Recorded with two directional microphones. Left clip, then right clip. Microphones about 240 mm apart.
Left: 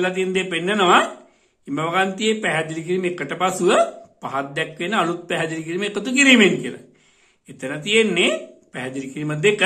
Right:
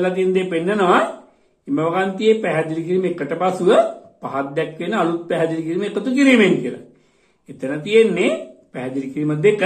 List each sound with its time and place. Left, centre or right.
0.0 s a man's voice: left
7.9 s a man's voice: left